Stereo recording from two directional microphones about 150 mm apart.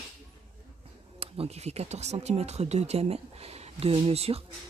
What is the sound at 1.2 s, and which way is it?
Speech, 40° right (ahead or behind).